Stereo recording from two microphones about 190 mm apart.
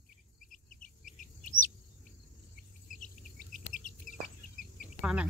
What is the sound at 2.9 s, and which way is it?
Chicken, 45° left (ahead or behind).